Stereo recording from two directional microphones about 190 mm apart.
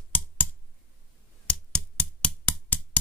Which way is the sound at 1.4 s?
5° left (ahead or behind).